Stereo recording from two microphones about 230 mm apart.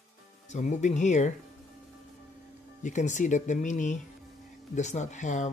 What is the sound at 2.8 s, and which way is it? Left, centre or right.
Speech, left.